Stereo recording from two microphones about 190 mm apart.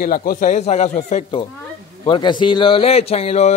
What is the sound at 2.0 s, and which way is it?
Speech, 25° left (ahead or behind).